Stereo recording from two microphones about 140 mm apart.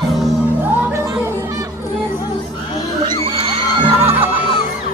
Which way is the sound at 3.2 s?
40° right (ahead or behind).